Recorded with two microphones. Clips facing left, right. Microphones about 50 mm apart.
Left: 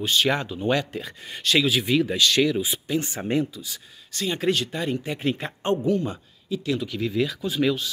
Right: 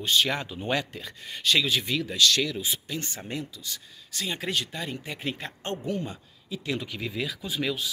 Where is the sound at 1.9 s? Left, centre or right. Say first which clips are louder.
Left 3 dB; left.